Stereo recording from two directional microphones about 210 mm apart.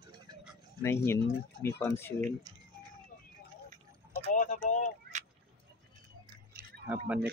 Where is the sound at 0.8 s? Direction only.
10° left (ahead or behind).